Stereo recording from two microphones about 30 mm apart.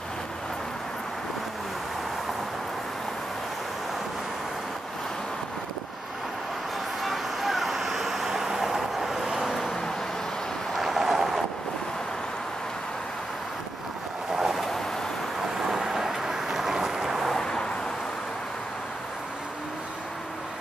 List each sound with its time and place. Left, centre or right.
7.0 s vehicle: centre
10.8 s a sound: centre
14.3 s waves: centre
15.7 s vehicle: centre
17.4 s vehicle: left